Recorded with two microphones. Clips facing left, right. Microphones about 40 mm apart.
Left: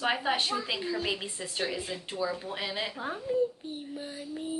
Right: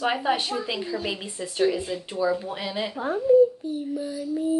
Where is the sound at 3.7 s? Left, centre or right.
Left.